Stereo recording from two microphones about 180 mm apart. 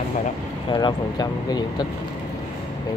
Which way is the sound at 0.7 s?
25° left (ahead or behind).